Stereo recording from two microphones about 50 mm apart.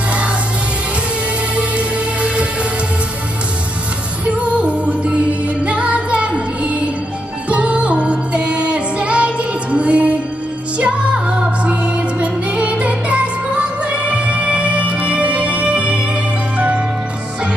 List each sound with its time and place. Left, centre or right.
1.6 s music: right
4.3 s music: right